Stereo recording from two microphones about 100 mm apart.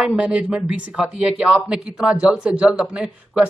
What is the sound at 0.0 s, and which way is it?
Speech, 10° right (ahead or behind).